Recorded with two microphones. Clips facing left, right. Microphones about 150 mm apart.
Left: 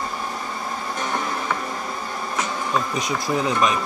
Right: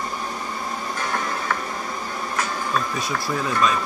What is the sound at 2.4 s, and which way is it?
Speech, 15° left (ahead or behind).